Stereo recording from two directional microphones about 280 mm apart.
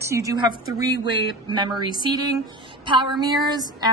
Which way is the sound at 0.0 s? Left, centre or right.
Centre.